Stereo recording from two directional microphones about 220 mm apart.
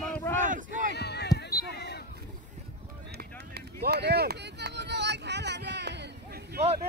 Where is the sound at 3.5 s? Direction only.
45° right (ahead or behind).